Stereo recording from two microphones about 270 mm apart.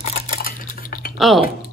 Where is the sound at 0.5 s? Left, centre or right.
Left.